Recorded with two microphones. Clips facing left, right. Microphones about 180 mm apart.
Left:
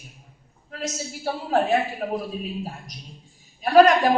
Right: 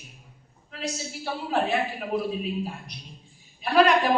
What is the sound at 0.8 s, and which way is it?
A woman's voice, 40° left (ahead or behind).